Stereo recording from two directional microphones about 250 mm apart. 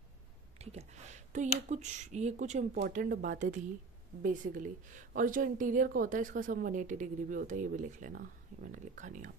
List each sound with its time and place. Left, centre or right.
0.6 s a woman's voice: right